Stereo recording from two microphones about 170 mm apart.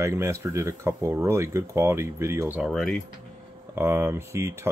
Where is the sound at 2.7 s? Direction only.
Centre (ahead or behind).